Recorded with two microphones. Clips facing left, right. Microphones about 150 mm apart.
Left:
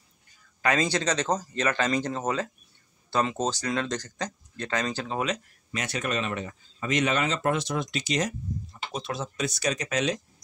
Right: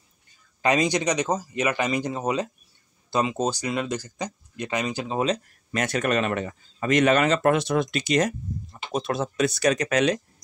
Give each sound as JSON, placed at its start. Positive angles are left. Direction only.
{"t": 0.6, "sound": "speech", "side_deg": -15}
{"t": 5.7, "sound": "speech", "side_deg": -50}